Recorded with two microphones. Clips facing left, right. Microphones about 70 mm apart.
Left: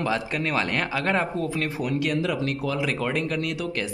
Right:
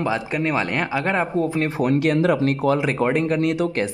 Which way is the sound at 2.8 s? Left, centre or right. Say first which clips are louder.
Right 6 dB; right.